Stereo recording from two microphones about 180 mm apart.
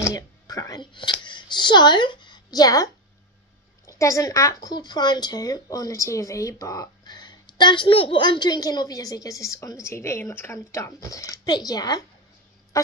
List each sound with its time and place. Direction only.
0.0 s speech: 20° left (ahead or behind)
12.7 s fowl: 20° left (ahead or behind)